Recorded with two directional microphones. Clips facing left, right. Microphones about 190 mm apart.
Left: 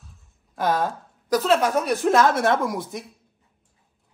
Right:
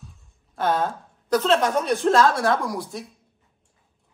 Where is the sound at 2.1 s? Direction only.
20° left (ahead or behind).